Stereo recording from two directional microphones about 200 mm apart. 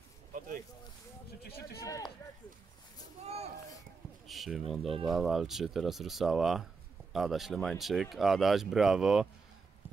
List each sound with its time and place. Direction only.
1.4 s speech: 55° left (ahead or behind)
1.8 s speech: 15° left (ahead or behind)
4.3 s speech: centre (ahead or behind)